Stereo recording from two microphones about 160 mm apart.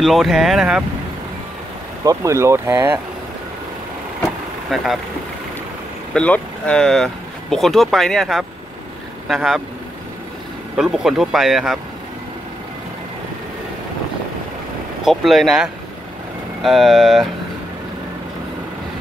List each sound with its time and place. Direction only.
0.0 s speech: centre (ahead or behind)
2.0 s speech: 20° right (ahead or behind)
6.1 s speech: 10° left (ahead or behind)
10.8 s speech: 5° right (ahead or behind)
15.0 s speech: centre (ahead or behind)